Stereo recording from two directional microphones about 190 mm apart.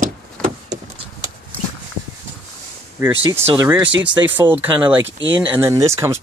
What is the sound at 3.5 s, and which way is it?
Speech, 10° right (ahead or behind).